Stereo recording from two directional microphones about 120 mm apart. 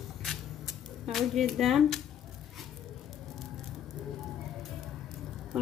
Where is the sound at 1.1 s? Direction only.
Centre (ahead or behind).